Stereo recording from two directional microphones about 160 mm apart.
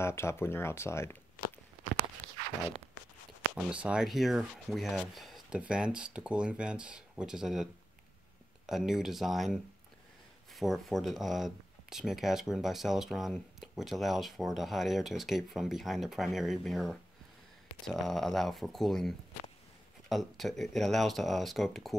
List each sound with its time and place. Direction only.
0.0 s speech: 15° left (ahead or behind)
2.2 s a sound: 40° right (ahead or behind)
3.5 s speech: 5° right (ahead or behind)
8.6 s speech: centre (ahead or behind)